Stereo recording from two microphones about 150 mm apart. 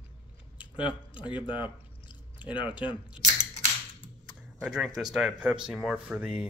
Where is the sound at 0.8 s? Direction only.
30° left (ahead or behind).